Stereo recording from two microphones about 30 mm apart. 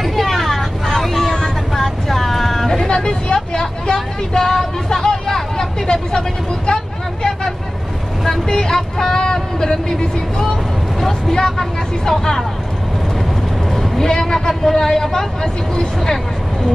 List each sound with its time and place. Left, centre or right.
0.0 s vehicle: centre
1.2 s vehicle: left
1.8 s vehicle: centre
2.9 s a sound: left
8.5 s vehicle: left
11.2 s speech: centre
13.9 s a sound: centre
14.5 s speech: centre